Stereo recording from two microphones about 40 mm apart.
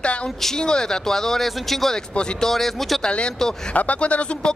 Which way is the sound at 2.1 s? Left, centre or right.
Left.